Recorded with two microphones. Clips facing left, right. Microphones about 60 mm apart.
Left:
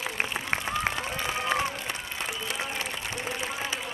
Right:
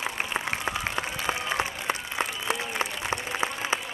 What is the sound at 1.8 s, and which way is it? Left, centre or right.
Applause, right.